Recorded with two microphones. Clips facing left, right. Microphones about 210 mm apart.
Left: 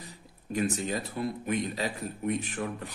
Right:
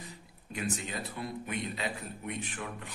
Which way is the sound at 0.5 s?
35° left (ahead or behind).